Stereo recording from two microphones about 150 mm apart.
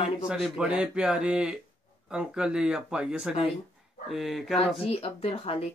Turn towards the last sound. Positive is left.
turn(degrees=40)  # may be behind; listen again after turning